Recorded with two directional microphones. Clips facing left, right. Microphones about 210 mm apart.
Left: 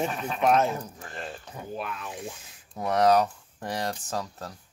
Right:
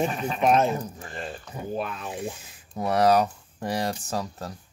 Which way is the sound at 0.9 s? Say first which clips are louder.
Right 2 dB; centre (ahead or behind).